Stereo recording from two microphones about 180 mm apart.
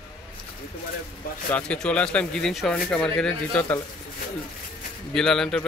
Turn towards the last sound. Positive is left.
turn(degrees=5)  # may be behind; listen again after turning